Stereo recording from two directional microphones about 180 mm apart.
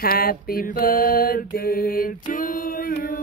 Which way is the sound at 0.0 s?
55° left (ahead or behind).